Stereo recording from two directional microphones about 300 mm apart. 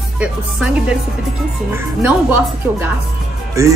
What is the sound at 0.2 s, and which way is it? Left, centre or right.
Speech, centre.